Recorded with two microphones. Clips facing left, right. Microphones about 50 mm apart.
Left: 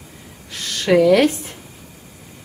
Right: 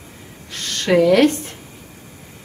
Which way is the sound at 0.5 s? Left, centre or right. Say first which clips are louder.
Left 1 dB; centre.